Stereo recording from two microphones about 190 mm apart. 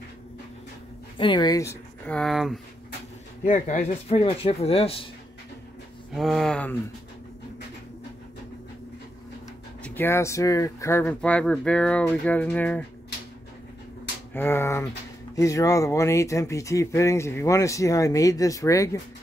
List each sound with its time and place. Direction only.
1.1 s speech: 25° left (ahead or behind); by 2.6 s centre (ahead or behind)
3.4 s speech: 40° left (ahead or behind)
6.1 s speech: centre (ahead or behind)
9.8 s speech: 10° left (ahead or behind)
14.3 s speech: 10° left (ahead or behind)